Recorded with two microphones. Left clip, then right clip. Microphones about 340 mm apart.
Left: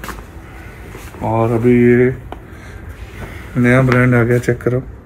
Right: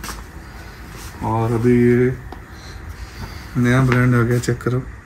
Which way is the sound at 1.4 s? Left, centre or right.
Centre.